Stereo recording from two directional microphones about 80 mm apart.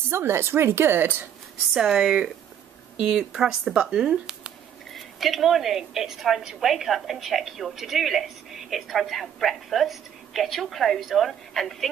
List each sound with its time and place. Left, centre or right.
0.1 s speech: right
1.7 s a woman's voice: centre